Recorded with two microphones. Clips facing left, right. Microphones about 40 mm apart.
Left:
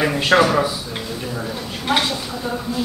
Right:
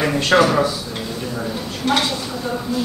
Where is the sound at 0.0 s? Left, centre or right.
Centre.